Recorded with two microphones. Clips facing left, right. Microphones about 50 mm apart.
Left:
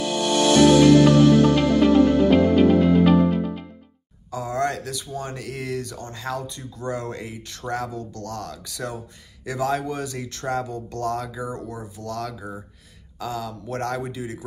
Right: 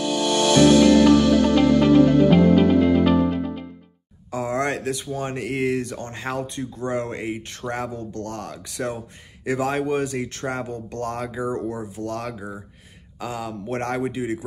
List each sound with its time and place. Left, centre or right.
0.0 s music: centre
4.3 s speech: right